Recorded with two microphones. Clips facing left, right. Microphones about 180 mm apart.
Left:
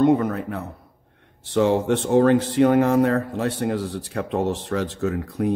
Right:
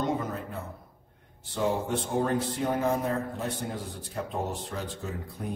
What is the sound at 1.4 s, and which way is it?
Speech, 85° left.